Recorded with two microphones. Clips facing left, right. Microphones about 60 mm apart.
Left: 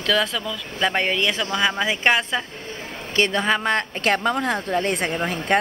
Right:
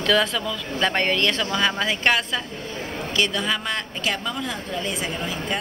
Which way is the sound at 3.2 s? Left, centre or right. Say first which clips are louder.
Left 4 dB; left.